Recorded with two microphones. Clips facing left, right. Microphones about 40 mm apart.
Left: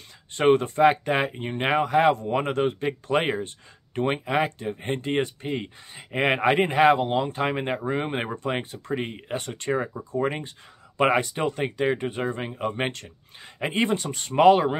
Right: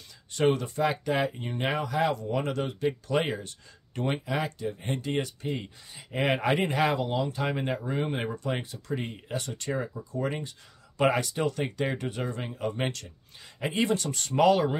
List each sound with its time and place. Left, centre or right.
0.3 s speech: left